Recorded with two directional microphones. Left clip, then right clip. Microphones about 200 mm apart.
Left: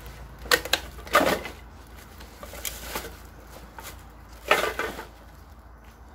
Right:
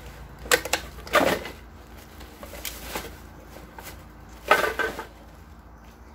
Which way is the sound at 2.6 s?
Centre (ahead or behind).